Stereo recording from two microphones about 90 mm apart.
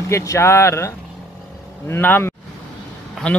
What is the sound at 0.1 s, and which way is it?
Speech, 35° left (ahead or behind).